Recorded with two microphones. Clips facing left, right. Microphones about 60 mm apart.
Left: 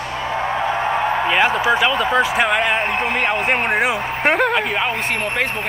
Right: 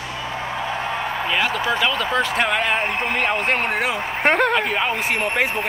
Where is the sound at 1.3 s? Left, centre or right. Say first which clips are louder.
Left 4 dB; left.